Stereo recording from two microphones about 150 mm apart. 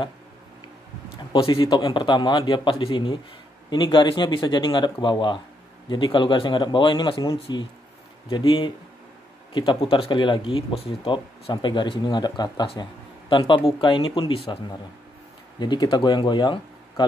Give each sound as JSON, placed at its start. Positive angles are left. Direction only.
{"t": 1.3, "sound": "a man's voice", "side_deg": 35}